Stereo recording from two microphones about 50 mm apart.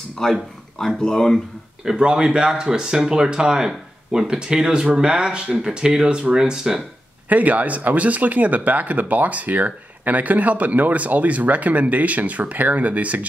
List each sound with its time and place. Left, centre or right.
0.2 s speech: centre
1.9 s speech: centre
7.2 s speech: right